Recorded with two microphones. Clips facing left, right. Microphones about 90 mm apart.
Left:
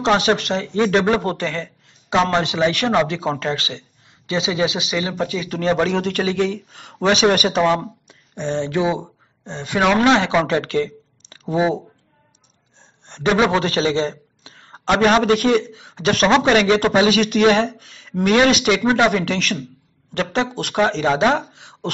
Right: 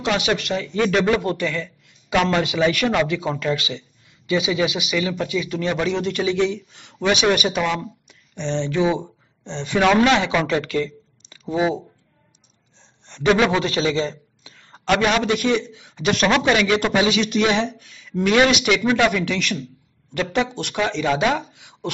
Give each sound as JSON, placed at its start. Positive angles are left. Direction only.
{"t": 0.1, "sound": "a man's voice", "side_deg": 35}
{"t": 8.5, "sound": "speech", "side_deg": 50}
{"t": 8.7, "sound": "a man's voice", "side_deg": 20}
{"t": 9.4, "sound": "speech", "side_deg": 45}
{"t": 9.9, "sound": "a man's voice", "side_deg": 35}
{"t": 10.6, "sound": "a sound", "side_deg": 40}
{"t": 12.7, "sound": "a sound", "side_deg": 55}
{"t": 13.2, "sound": "a man's voice", "side_deg": 25}
{"t": 13.6, "sound": "a man's voice", "side_deg": 40}
{"t": 13.8, "sound": "a man's voice", "side_deg": 30}
{"t": 14.1, "sound": "a sound", "side_deg": 45}
{"t": 14.9, "sound": "a man's voice", "side_deg": 35}
{"t": 21.5, "sound": "a sound", "side_deg": 30}